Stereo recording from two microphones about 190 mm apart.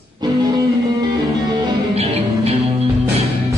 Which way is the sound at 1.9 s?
30° right (ahead or behind).